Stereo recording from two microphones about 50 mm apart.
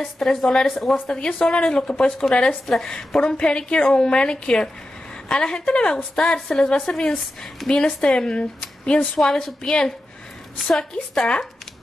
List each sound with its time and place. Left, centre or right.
0.2 s a woman's voice: centre
9.2 s a woman's voice: centre